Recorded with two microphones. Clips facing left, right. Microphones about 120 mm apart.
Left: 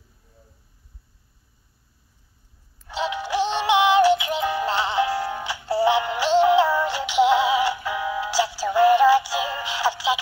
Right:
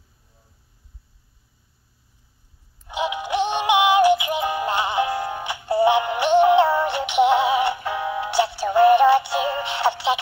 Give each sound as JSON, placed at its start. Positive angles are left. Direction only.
{"t": 2.9, "sound": "synthetic singing", "side_deg": -15}
{"t": 7.7, "sound": "music", "side_deg": -25}
{"t": 8.6, "sound": "synthetic singing", "side_deg": -20}
{"t": 9.1, "sound": "music", "side_deg": -60}
{"t": 9.7, "sound": "synthetic singing", "side_deg": -60}